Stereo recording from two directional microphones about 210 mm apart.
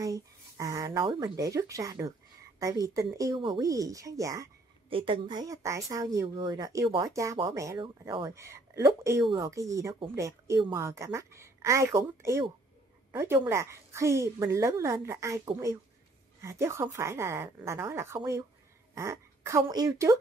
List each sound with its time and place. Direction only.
0.0 s speech: 15° right (ahead or behind)